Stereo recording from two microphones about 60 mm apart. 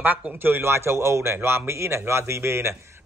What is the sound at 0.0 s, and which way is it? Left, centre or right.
A man's voice, right.